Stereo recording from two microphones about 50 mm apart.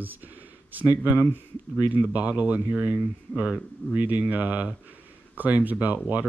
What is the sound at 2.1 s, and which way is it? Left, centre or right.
Speech, right.